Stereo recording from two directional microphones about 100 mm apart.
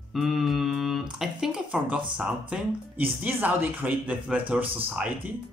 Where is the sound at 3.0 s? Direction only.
20° right (ahead or behind).